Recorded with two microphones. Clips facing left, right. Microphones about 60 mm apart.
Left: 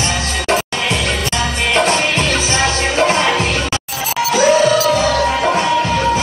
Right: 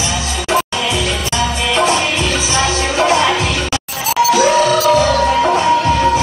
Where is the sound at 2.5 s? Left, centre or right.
Left.